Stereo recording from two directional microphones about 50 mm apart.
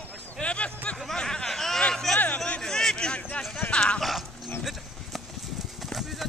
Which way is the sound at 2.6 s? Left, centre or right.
Centre.